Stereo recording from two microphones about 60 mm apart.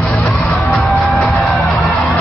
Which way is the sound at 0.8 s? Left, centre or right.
Centre.